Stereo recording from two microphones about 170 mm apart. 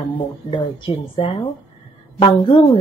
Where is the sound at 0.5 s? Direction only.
30° left (ahead or behind).